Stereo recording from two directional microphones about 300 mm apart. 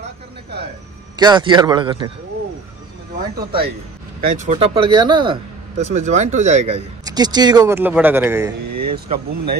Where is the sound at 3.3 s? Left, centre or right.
Right; by 8.5 s centre.